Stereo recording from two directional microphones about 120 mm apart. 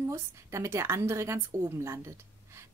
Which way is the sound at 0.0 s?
25° right (ahead or behind).